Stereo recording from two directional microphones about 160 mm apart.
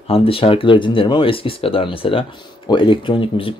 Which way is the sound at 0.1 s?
35° left (ahead or behind).